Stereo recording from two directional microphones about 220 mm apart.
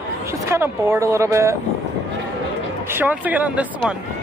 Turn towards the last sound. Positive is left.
turn(degrees=-5)  # may be behind; listen again after turning